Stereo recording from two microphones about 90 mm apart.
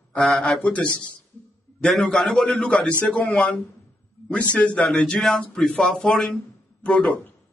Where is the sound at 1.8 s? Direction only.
5° left (ahead or behind).